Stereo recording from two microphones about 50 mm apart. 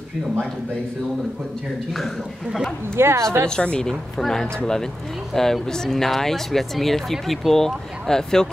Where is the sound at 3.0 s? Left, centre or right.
Right.